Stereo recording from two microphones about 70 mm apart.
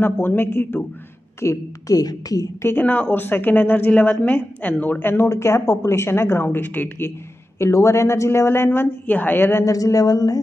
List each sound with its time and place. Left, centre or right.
0.0 s a woman's voice: left
1.4 s a woman's voice: left
2.6 s a woman's voice: left
7.5 s a woman's voice: left
9.7 s a woman's voice: left